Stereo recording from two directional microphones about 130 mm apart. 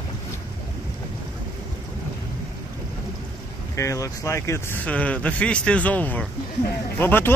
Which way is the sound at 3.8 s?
25° left (ahead or behind).